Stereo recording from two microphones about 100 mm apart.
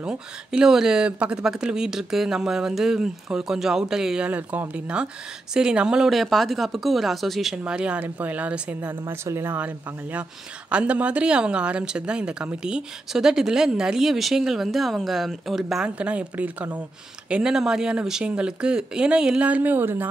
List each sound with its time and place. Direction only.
0.0 s speech: 10° right (ahead or behind)
4.3 s speech: 15° right (ahead or behind)
9.0 s speech: 30° right (ahead or behind)